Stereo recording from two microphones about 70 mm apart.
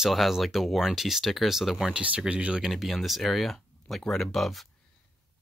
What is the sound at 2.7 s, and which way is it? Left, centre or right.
Speech, centre.